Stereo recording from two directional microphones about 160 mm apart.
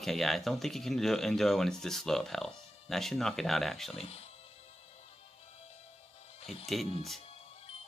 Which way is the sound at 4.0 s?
40° left (ahead or behind).